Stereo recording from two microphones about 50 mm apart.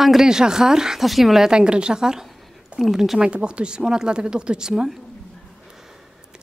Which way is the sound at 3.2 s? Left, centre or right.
Centre.